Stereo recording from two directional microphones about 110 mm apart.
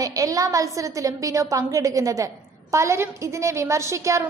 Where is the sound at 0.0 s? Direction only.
30° right (ahead or behind).